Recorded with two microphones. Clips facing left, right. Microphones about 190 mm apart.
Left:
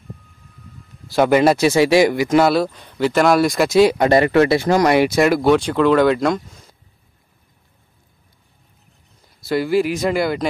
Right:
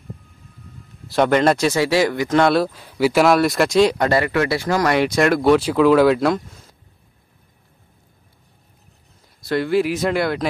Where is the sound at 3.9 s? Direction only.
20° left (ahead or behind); by 6.7 s centre (ahead or behind).